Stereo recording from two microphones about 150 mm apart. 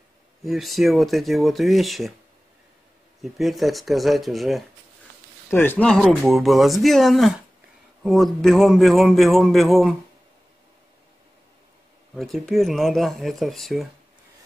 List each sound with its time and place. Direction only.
0.4 s a man's voice: centre (ahead or behind)
3.2 s a man's voice: centre (ahead or behind)
5.5 s a man's voice: 15° left (ahead or behind)
12.2 s a man's voice: centre (ahead or behind)